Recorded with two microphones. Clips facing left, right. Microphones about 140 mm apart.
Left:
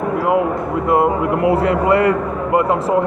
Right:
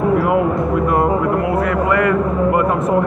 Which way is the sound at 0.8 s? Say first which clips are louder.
Left 3 dB; 20° left (ahead or behind).